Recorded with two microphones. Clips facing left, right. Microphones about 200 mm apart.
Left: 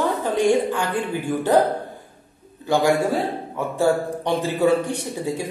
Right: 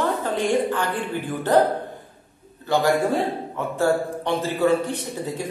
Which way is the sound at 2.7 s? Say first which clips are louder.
Left 1 dB; 10° left (ahead or behind).